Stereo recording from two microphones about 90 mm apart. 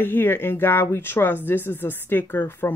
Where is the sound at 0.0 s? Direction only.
25° left (ahead or behind).